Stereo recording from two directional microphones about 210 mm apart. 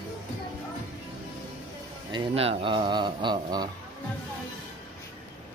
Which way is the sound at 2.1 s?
25° right (ahead or behind).